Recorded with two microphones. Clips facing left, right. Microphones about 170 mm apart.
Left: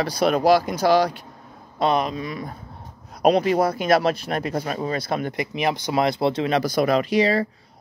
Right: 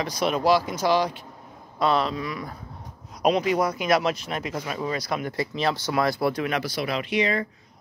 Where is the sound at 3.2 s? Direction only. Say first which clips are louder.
Left 4 dB; 40° left (ahead or behind).